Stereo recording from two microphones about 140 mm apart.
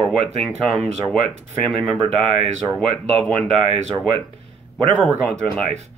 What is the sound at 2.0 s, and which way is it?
Speech, 45° right (ahead or behind).